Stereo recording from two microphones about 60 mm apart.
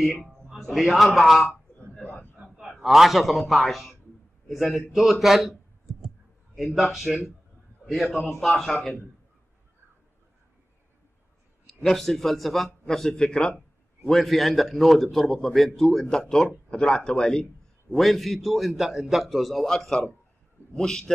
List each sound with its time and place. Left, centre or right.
0.7 s a man's voice: centre
2.3 s a sound: centre
2.8 s a man's voice: centre
6.0 s a sound: centre
7.8 s a man's voice: centre
11.6 s a man's voice: centre
17.9 s a man's voice: centre